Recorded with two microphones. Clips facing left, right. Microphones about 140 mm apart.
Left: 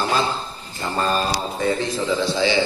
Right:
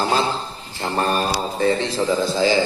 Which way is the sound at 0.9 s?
65° right (ahead or behind).